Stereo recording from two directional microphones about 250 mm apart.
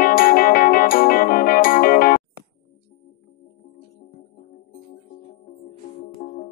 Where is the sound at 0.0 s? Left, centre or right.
Left.